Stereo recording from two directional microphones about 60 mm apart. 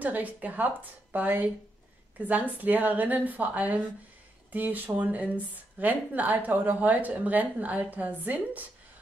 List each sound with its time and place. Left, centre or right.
0.0 s a woman's voice: right